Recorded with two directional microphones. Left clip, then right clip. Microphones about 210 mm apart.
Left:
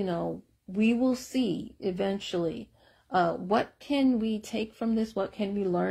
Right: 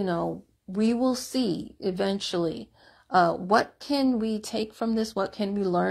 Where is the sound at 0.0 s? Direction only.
15° right (ahead or behind).